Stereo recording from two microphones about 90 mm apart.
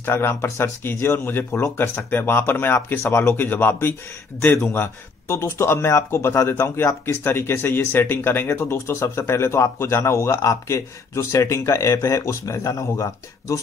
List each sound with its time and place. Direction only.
0.0 s speech: 25° left (ahead or behind); by 13.6 s 40° left (ahead or behind)